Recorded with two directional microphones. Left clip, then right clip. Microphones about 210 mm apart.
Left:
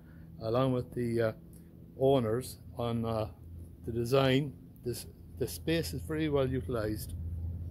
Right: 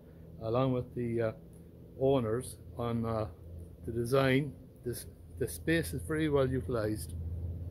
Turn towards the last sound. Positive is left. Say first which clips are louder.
# right 1 dB
turn(degrees=-10)  # may be behind; listen again after turning